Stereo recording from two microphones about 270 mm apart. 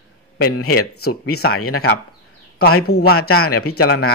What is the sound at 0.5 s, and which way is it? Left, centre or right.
A man's voice, left.